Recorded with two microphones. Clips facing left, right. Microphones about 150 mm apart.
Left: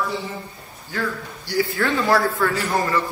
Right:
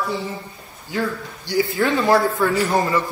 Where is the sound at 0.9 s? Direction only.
20° right (ahead or behind).